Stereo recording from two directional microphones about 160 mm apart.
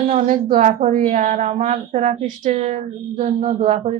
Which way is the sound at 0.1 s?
50° right (ahead or behind).